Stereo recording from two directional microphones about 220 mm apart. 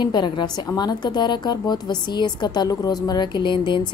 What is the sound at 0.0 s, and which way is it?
A woman's voice, 20° left (ahead or behind).